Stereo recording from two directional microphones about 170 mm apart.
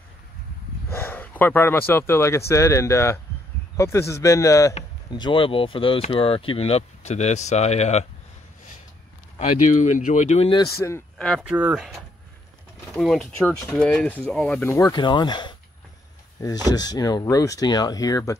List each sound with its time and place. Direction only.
0.8 s speech: 15° left (ahead or behind); by 8.1 s 40° left (ahead or behind)
9.7 s speech: 50° left (ahead or behind)
10.6 s speech: 15° left (ahead or behind)
11.1 s speech: 5° left (ahead or behind)
12.9 s speech: centre (ahead or behind); by 18.4 s 20° left (ahead or behind)